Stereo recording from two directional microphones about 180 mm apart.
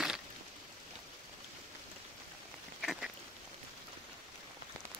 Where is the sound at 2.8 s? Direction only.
Centre (ahead or behind).